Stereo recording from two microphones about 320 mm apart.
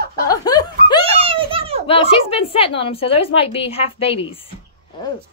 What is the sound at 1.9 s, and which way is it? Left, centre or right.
A woman's voice, centre.